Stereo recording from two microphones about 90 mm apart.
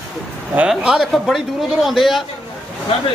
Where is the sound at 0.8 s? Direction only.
5° right (ahead or behind).